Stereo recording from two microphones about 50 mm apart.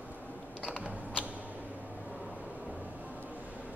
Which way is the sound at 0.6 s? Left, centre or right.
Left.